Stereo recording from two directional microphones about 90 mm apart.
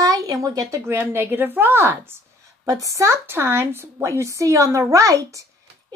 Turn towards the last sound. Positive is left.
turn(degrees=-35)  # may be behind; listen again after turning